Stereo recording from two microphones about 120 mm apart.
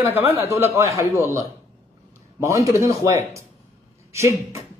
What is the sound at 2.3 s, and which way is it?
Speech, 25° right (ahead or behind).